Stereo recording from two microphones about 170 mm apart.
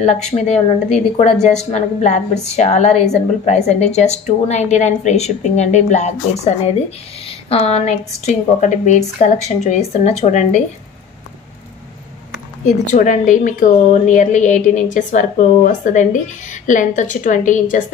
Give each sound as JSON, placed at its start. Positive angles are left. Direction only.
{"t": 0.4, "sound": "a woman's voice", "side_deg": 40}
{"t": 12.6, "sound": "a woman's voice", "side_deg": 45}